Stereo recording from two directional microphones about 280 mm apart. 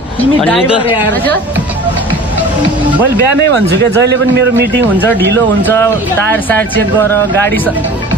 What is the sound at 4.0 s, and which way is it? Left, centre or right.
Speech, right.